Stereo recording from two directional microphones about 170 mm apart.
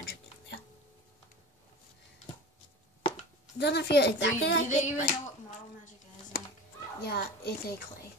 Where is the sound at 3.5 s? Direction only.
85° left.